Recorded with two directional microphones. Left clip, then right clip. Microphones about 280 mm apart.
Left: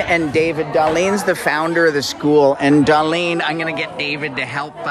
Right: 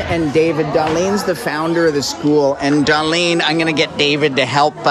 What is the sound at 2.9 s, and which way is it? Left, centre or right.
Speech, centre.